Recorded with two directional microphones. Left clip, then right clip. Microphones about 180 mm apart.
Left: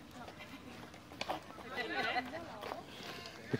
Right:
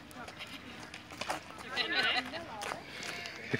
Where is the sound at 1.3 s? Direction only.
30° left (ahead or behind).